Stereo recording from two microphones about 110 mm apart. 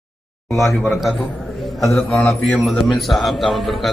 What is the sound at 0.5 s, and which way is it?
Speech, 25° left (ahead or behind).